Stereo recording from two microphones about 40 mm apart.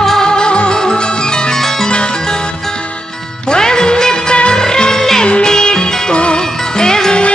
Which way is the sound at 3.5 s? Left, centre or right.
Centre.